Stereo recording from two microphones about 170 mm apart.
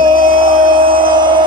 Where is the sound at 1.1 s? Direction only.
25° right (ahead or behind).